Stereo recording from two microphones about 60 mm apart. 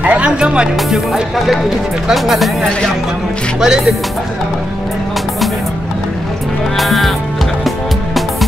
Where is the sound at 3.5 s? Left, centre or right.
Centre.